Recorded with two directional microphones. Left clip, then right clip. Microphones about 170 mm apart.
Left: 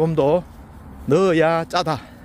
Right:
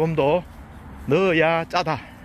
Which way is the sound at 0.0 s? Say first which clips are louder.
Left 2 dB; 45° left (ahead or behind).